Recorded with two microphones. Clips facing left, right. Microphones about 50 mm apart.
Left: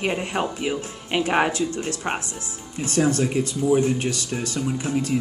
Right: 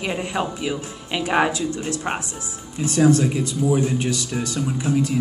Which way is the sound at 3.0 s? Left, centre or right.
Left.